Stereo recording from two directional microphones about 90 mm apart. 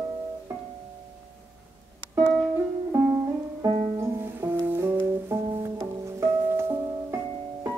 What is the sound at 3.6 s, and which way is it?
Music, 35° right (ahead or behind).